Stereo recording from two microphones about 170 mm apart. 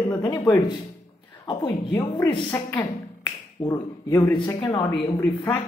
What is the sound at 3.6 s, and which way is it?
A woman's voice, 20° left (ahead or behind).